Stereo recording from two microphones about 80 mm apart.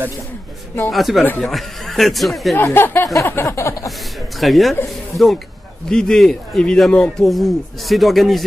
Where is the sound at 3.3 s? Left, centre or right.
Left.